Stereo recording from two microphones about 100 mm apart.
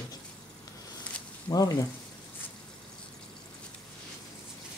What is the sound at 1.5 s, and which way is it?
Speech, 40° left (ahead or behind).